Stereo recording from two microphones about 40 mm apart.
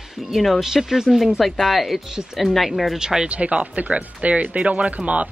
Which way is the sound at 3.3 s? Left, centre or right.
Right.